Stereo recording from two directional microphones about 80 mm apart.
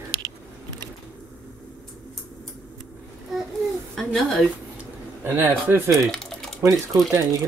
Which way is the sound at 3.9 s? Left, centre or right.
Centre.